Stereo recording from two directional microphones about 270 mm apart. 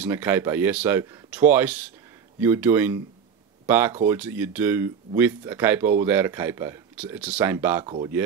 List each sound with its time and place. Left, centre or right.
0.0 s speech: centre
7.8 s speech: centre